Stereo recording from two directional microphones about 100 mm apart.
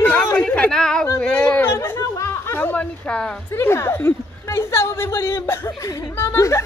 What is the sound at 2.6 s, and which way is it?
A woman's voice, 20° left (ahead or behind).